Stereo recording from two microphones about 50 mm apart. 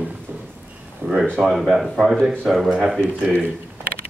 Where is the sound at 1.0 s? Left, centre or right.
Right.